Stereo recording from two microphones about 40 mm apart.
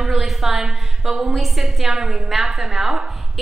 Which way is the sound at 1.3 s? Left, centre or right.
Centre.